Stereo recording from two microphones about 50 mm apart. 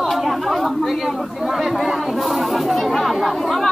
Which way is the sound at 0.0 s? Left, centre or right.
Centre.